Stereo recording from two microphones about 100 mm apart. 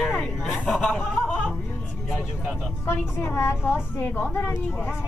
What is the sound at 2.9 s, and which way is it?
A woman's voice, 25° left (ahead or behind).